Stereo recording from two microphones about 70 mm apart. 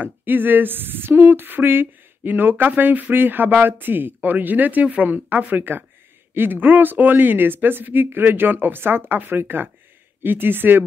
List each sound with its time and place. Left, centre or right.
0.0 s speech: right